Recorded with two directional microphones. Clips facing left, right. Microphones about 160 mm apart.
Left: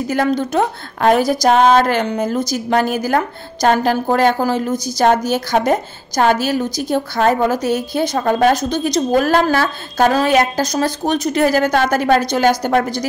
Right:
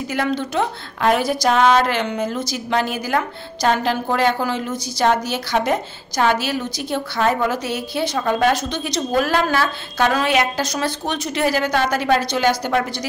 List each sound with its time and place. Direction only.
0.1 s a woman's voice: 40° left (ahead or behind)